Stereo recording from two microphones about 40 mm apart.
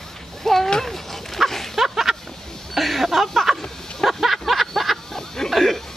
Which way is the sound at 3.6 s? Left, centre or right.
Centre.